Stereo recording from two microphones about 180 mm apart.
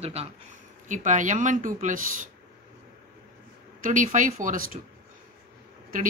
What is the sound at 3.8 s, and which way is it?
Speech, 45° right (ahead or behind).